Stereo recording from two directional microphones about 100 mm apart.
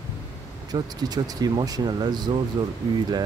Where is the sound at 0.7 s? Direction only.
40° right (ahead or behind).